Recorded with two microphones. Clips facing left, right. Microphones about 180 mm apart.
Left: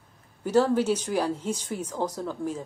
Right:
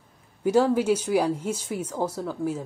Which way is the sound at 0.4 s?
10° right (ahead or behind).